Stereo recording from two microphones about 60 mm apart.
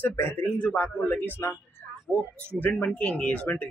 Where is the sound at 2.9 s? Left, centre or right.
Left.